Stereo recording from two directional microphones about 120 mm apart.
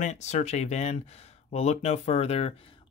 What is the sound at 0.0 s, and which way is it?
Speech, 70° left (ahead or behind).